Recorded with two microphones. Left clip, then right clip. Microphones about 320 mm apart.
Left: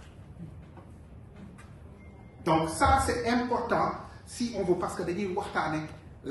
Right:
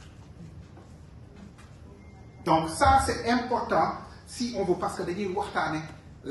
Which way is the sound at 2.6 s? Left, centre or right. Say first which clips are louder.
Right 3 dB; centre.